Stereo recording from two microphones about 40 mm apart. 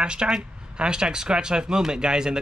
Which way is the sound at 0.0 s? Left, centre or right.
Right.